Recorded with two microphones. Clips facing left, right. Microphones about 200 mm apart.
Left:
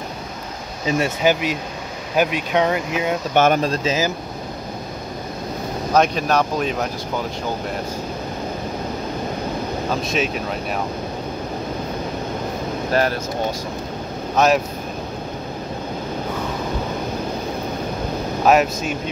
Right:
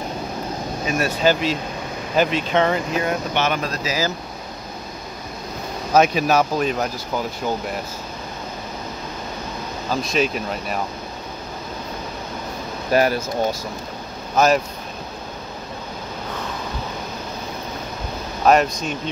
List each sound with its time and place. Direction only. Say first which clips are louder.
0.8 s speech: left 1 dB; 25° left (ahead or behind)
3.3 s speech: left 9 dB; 50° left (ahead or behind)
3.6 s speech: left 4 dB; 30° left (ahead or behind)
5.9 s speech: right 1 dB; 5° right (ahead or behind)
10.0 s speech: right 1 dB; centre (ahead or behind)
12.9 s speech: right 2 dB; 10° right (ahead or behind)
14.3 s speech: even; centre (ahead or behind)
18.4 s speech: even; 5° left (ahead or behind)